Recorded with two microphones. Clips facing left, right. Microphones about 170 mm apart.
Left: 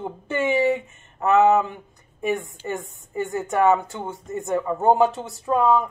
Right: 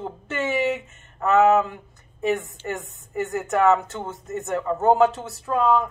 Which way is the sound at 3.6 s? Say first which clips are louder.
Even; 15° left (ahead or behind).